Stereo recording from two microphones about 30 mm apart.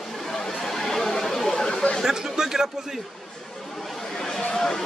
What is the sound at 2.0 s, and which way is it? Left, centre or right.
Speech, centre.